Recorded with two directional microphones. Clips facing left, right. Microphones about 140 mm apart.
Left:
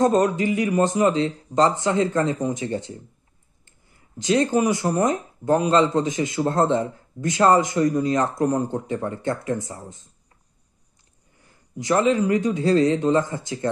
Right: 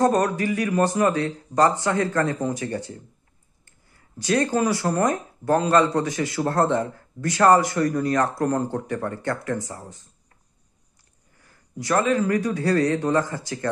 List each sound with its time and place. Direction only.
0.0 s speech: 20° left (ahead or behind)
11.3 s speech: 20° left (ahead or behind)